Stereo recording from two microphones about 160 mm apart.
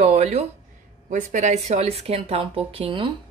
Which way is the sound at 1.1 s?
50° right (ahead or behind).